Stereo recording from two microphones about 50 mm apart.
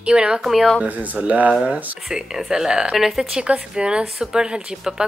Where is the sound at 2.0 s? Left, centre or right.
Centre.